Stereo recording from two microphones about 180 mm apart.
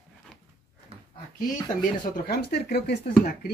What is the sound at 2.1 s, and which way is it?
Speech, 60° left (ahead or behind).